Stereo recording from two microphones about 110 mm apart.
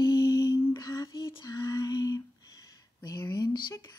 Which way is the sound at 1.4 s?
30° left (ahead or behind).